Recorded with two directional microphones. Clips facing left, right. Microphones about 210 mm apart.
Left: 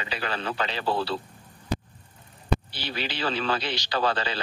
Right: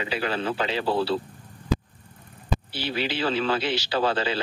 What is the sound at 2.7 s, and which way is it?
Speech, 10° right (ahead or behind).